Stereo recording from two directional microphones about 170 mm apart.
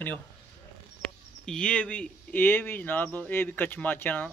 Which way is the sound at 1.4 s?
5° left (ahead or behind).